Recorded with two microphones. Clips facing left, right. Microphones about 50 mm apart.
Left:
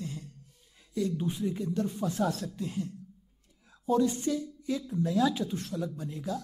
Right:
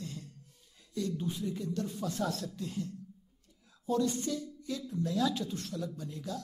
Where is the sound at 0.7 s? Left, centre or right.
Centre.